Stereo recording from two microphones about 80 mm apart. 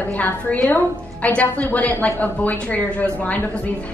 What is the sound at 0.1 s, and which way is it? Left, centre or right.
A woman's voice, centre.